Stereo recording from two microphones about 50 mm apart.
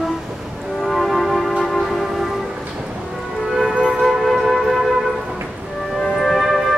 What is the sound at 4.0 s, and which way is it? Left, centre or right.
Music, centre.